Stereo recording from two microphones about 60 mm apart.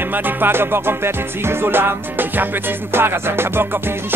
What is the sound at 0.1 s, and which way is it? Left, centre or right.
Music, right.